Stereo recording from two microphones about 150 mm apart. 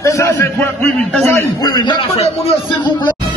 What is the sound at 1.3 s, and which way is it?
A man's voice, 25° left (ahead or behind).